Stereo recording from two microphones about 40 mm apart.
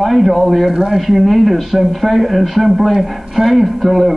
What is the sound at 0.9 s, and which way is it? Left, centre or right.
A man's voice, centre.